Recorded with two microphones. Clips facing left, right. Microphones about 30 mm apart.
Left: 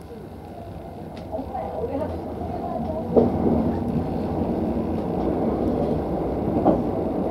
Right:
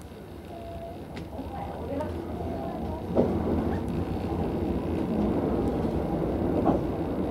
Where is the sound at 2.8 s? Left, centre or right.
Left.